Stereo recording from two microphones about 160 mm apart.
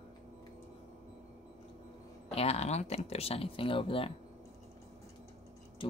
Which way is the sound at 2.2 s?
40° left (ahead or behind).